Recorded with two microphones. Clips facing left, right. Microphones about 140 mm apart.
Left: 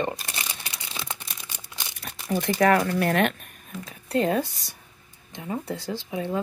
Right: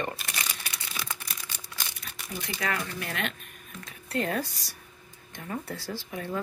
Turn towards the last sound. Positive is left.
turn(degrees=20)  # may be behind; listen again after turning